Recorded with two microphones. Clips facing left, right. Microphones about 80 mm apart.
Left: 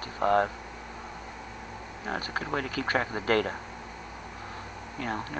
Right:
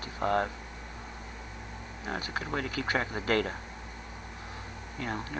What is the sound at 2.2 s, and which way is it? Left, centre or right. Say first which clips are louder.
Speech: left 2 dB; left.